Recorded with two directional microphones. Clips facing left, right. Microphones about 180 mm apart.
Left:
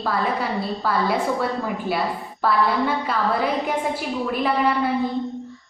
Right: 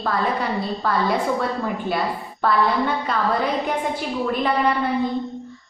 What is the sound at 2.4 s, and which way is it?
A woman's voice, 5° left (ahead or behind).